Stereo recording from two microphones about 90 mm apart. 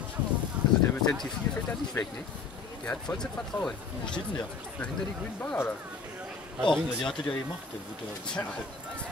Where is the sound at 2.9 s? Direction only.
10° left (ahead or behind).